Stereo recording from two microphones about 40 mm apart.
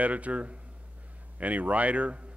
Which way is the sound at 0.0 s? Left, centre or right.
Right.